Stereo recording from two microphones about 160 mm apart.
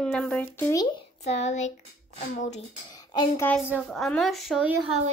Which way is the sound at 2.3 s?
45° left (ahead or behind).